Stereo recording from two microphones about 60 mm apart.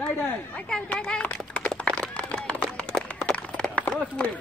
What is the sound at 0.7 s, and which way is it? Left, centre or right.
A child's voice, centre.